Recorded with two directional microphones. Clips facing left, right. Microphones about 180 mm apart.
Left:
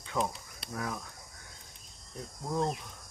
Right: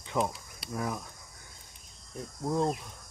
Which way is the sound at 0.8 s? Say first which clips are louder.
Right 3 dB; 15° right (ahead or behind).